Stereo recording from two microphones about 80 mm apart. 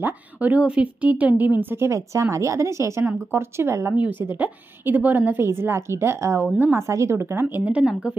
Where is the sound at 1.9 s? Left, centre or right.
Right.